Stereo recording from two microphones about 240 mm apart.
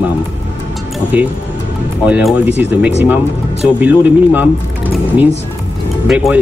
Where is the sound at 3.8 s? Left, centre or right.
Centre.